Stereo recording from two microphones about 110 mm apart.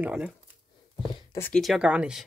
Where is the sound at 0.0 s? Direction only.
10° right (ahead or behind).